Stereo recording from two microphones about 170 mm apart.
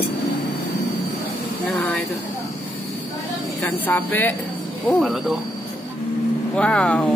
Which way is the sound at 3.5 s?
10° left (ahead or behind).